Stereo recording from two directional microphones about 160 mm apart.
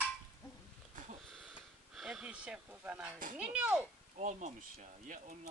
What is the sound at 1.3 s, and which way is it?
Speech, centre (ahead or behind).